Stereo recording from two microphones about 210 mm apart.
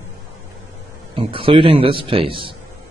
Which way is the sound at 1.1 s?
25° right (ahead or behind).